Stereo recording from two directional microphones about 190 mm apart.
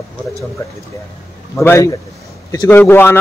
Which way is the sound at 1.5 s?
15° left (ahead or behind).